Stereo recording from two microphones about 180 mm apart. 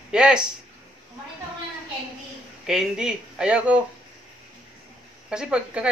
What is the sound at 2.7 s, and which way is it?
Speech, 5° right (ahead or behind).